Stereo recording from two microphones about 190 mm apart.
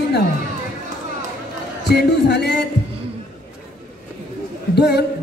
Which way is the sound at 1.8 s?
60° left (ahead or behind).